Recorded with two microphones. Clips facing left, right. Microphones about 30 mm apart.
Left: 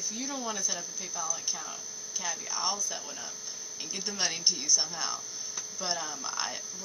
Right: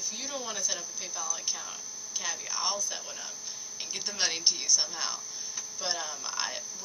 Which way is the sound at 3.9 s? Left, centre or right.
Right.